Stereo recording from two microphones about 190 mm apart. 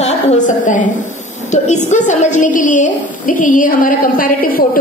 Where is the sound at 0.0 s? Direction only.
40° left (ahead or behind).